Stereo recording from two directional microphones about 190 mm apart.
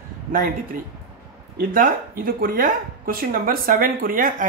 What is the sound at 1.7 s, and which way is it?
Speech, 50° right (ahead or behind).